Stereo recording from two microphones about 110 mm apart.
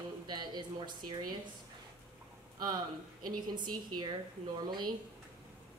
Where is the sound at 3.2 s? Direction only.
40° right (ahead or behind).